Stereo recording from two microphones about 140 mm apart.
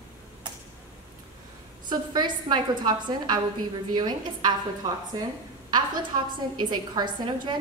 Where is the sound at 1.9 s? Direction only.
35° right (ahead or behind).